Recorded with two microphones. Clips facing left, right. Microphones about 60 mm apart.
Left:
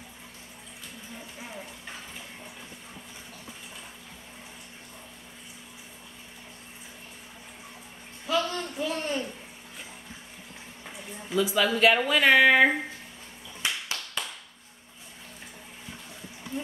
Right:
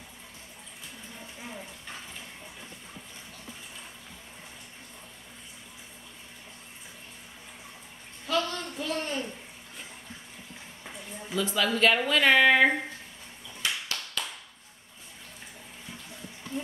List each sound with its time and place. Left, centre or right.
8.3 s a man's voice: centre
10.9 s speech: centre
13.6 s a sound: centre